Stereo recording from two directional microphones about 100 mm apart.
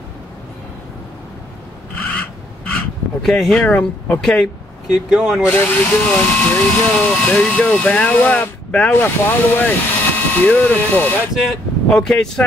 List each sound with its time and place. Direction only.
2.0 s a sound: 10° left (ahead or behind)
5.1 s speech: 5° right (ahead or behind)
5.5 s speech: 20° left (ahead or behind)
11.3 s speech: centre (ahead or behind)